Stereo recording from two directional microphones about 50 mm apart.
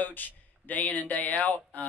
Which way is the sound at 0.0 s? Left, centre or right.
Left.